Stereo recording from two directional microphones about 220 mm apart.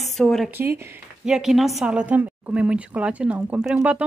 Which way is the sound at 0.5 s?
10° right (ahead or behind).